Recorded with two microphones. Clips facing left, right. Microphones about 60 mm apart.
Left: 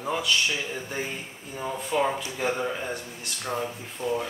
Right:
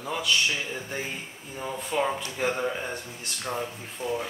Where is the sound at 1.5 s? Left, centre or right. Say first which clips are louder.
Left 2 dB; centre.